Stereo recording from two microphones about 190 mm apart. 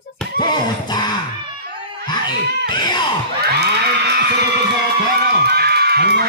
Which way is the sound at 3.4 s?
60° right (ahead or behind).